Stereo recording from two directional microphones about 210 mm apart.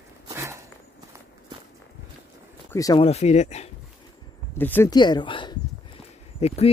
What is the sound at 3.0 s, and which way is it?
Speech, 30° left (ahead or behind).